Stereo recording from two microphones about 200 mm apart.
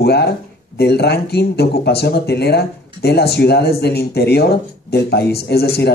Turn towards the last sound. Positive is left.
turn(degrees=50)  # may be behind; listen again after turning